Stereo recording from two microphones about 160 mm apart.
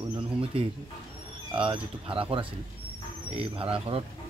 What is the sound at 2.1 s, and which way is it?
Speech, 35° right (ahead or behind).